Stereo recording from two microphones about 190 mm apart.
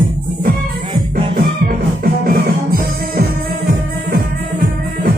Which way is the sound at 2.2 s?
55° right (ahead or behind).